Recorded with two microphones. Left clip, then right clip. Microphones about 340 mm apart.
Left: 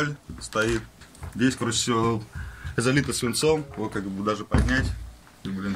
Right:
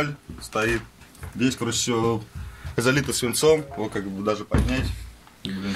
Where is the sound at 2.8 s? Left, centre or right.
Centre.